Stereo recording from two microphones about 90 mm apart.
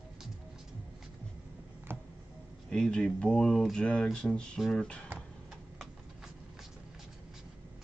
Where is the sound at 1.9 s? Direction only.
25° right (ahead or behind).